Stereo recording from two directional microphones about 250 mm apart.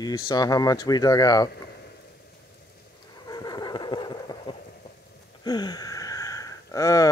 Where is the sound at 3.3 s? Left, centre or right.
Centre.